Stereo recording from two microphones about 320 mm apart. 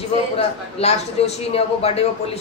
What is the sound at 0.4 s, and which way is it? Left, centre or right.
A man's voice, centre.